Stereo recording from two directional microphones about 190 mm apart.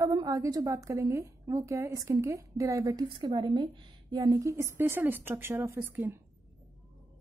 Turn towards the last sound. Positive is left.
turn(degrees=-10)  # may be behind; listen again after turning